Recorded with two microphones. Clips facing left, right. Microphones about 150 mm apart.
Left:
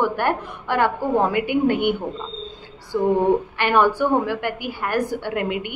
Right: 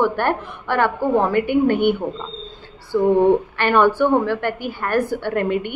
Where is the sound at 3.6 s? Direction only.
10° left (ahead or behind).